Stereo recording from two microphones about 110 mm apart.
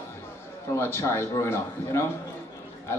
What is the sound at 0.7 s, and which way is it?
A man's voice, 25° left (ahead or behind).